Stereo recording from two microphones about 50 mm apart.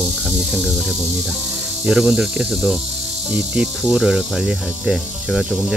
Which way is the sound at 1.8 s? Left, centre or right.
Centre.